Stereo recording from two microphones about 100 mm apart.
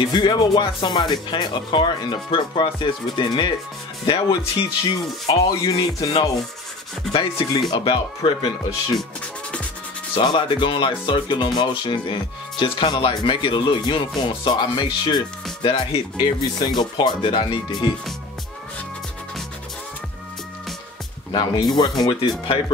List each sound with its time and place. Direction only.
0.0 s speech: 45° left (ahead or behind)
7.1 s speech: 60° left (ahead or behind)
10.1 s speech: 55° left (ahead or behind)
21.3 s speech: 50° left (ahead or behind)